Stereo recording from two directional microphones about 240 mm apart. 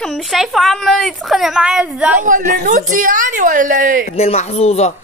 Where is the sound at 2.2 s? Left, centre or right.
Right.